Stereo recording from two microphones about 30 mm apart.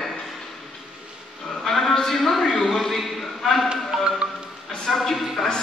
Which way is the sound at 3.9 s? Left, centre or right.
Right.